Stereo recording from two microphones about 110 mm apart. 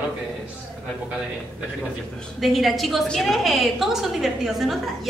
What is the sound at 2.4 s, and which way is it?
A woman's voice, centre (ahead or behind).